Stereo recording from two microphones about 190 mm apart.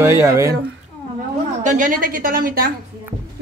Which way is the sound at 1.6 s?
40° right (ahead or behind).